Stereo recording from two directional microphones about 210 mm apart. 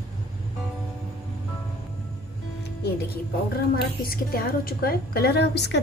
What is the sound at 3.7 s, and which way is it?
A woman's voice, 45° left (ahead or behind).